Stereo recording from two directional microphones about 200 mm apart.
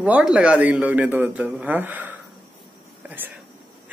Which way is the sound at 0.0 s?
5° right (ahead or behind).